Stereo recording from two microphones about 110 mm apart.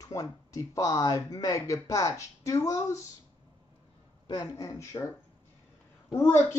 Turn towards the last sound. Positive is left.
turn(degrees=20)  # may be behind; listen again after turning